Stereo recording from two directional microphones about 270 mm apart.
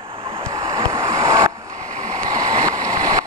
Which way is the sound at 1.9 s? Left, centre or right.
Right.